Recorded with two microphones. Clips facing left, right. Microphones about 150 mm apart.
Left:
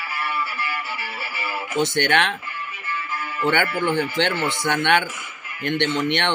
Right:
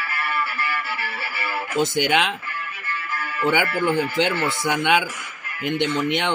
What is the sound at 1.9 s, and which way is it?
Speech, 5° right (ahead or behind).